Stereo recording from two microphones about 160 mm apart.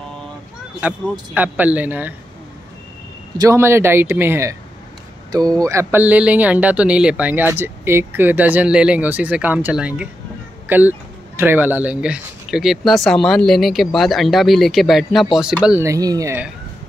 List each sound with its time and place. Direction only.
1.3 s speech: 10° right (ahead or behind)
3.3 s speech: 20° right (ahead or behind)
11.3 s speech: 15° right (ahead or behind)
15.8 s speech: 20° right (ahead or behind)